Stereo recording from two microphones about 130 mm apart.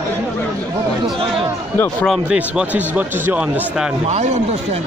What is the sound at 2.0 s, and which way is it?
Speech, 5° right (ahead or behind).